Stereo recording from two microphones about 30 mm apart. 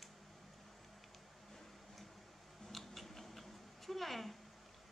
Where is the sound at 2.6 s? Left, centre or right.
Centre.